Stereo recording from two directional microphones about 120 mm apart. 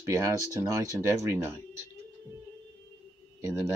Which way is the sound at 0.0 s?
25° right (ahead or behind).